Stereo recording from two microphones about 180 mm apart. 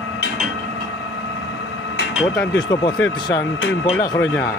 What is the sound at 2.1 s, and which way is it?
Speech, centre (ahead or behind).